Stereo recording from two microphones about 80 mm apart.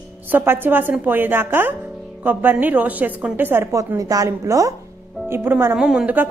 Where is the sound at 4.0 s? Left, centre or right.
Right.